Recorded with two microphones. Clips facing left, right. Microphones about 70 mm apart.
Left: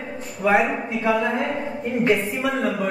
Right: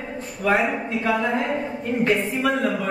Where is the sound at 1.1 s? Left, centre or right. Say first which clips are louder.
Even; centre.